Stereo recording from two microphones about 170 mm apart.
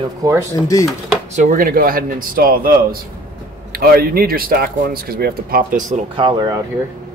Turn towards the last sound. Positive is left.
turn(degrees=-25)  # may be behind; listen again after turning